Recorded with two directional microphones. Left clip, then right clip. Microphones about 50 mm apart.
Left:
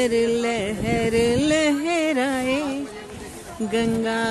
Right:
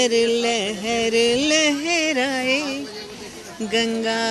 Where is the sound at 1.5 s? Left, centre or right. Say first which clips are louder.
Right 2 dB; left.